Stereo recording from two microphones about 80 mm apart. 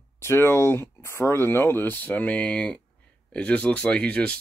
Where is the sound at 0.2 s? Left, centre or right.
Left.